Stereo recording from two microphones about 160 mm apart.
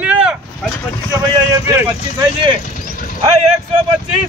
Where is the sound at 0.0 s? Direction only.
5° right (ahead or behind).